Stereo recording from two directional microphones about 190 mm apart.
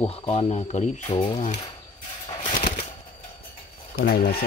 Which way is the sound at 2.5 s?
45° left (ahead or behind).